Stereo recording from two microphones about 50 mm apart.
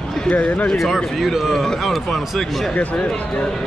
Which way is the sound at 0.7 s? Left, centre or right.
Centre.